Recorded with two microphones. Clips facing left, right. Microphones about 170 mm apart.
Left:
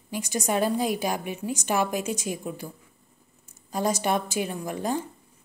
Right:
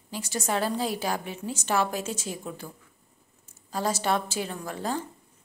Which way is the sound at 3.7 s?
15° left (ahead or behind).